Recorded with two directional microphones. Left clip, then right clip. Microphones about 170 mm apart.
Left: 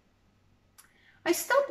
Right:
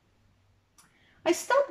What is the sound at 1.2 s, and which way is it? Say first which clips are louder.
Speech: right 1 dB; 15° right (ahead or behind).